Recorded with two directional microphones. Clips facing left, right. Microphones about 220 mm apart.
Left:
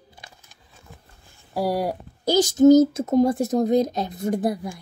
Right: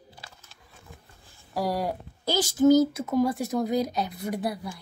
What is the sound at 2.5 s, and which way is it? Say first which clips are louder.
A woman's voice: left 5 dB; 20° left (ahead or behind).